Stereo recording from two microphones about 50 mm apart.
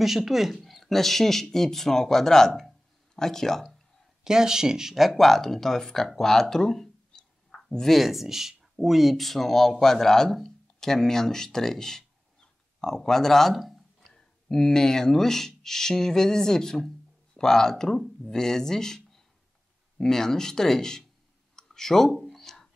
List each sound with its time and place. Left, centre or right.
0.0 s speech: centre
4.2 s speech: centre
6.1 s a sound: centre
7.9 s speech: centre
14.1 s speech: centre
21.5 s clicking: centre
22.1 s a sound: centre